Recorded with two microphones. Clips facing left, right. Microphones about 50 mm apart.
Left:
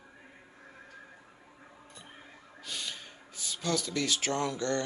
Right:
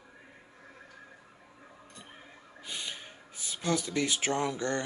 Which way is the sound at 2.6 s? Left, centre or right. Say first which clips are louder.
Even; centre.